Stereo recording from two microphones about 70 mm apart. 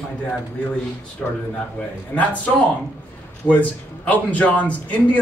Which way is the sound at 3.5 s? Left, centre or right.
Left.